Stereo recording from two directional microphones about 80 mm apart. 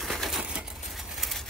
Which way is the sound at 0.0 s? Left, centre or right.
Centre.